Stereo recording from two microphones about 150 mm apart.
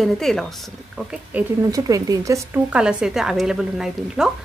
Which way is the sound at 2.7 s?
5° right (ahead or behind).